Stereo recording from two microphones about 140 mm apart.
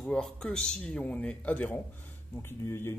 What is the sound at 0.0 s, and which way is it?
Speech, 5° left (ahead or behind).